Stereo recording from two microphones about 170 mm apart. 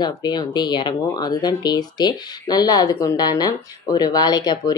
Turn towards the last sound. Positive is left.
turn(degrees=25)  # may be behind; listen again after turning